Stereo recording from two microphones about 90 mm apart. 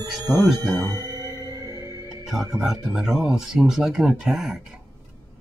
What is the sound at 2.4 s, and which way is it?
Speech, 5° right (ahead or behind).